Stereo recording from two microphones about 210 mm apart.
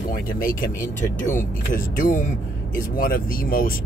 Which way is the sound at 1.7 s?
40° left (ahead or behind).